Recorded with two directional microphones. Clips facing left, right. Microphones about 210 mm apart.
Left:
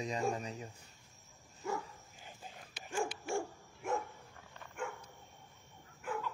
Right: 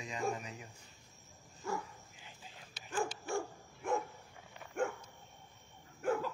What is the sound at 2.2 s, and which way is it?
Whispering, 50° left (ahead or behind).